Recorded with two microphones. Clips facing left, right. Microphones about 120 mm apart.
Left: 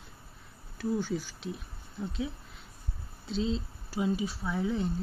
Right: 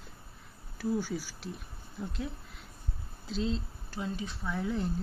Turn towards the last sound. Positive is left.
turn(degrees=0)  # may be behind; listen again after turning